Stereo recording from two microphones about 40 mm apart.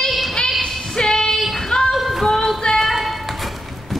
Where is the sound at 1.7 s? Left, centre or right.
Centre.